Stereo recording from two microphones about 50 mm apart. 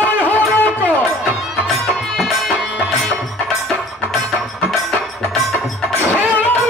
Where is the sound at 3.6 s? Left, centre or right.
Centre.